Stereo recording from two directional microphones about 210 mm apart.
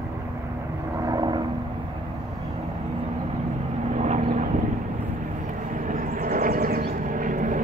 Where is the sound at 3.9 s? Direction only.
30° right (ahead or behind).